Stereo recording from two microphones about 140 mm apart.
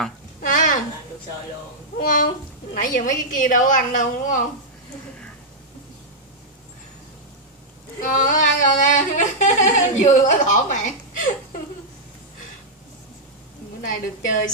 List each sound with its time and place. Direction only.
0.5 s a sound: 70° left (ahead or behind)
2.0 s a woman's voice: 85° left; by 4.4 s 65° left (ahead or behind)
8.0 s singing: 65° left (ahead or behind)
13.8 s a woman's voice: 70° left (ahead or behind)